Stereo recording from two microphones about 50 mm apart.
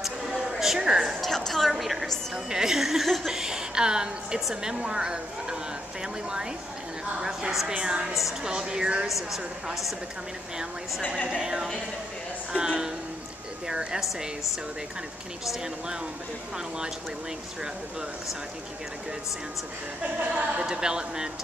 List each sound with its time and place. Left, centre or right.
0.0 s a sound: centre
1.2 s a sound: centre
2.3 s a woman's voice: centre
7.2 s a woman's voice: centre
8.1 s a woman's voice: centre
8.5 s a woman's voice: centre
9.0 s a woman's voice: centre
11.2 s a woman's voice: centre
20.2 s a woman's voice: right